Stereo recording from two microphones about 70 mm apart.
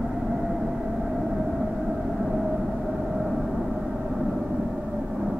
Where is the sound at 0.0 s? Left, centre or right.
Centre.